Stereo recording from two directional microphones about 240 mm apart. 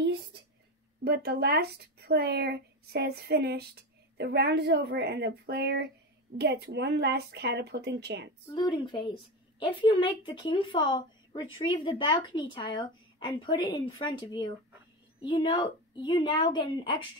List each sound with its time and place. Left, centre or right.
1.0 s speech: right
8.5 s a woman's voice: centre